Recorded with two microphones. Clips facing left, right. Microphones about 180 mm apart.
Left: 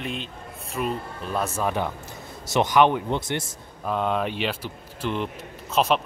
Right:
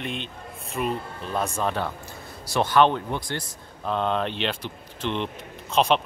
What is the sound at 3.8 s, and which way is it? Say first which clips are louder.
Speech: even; 10° left (ahead or behind).